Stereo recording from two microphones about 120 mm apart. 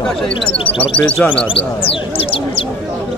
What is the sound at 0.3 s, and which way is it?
Speech, 50° left (ahead or behind).